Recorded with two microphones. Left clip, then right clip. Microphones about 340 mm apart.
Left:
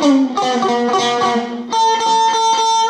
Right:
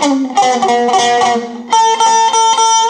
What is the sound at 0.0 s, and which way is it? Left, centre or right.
Music, right.